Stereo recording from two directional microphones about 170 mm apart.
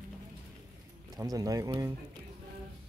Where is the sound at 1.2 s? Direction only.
20° right (ahead or behind).